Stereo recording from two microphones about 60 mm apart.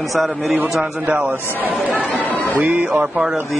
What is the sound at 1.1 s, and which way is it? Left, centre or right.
Speech, right.